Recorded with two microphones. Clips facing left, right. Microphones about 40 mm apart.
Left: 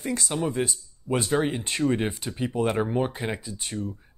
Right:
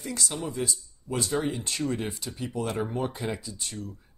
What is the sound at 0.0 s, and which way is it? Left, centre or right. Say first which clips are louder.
Speech: left 5 dB; left.